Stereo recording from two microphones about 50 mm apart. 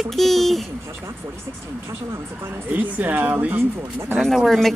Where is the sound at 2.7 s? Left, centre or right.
Right.